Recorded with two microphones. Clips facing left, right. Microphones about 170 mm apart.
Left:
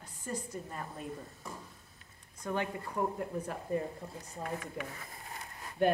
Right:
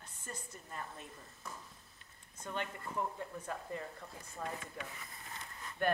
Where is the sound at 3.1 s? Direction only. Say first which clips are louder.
Left 6 dB; 15° left (ahead or behind).